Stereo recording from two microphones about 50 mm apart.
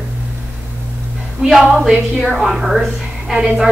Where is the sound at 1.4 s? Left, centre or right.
Centre.